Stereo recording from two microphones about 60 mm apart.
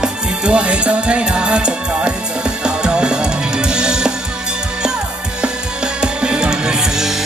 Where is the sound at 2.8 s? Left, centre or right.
Centre.